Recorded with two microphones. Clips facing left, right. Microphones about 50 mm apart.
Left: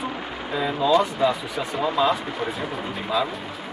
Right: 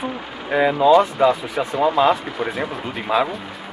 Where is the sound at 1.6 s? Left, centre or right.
Right.